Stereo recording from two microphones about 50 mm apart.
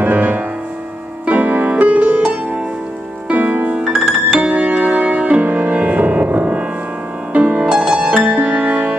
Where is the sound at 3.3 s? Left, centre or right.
Right.